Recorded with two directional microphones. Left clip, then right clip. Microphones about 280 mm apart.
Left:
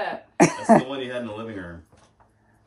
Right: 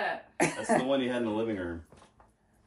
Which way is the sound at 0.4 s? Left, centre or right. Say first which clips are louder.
Left 11 dB; left.